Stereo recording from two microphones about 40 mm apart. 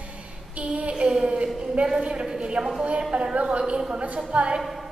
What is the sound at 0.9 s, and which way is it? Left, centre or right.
A woman's voice, centre.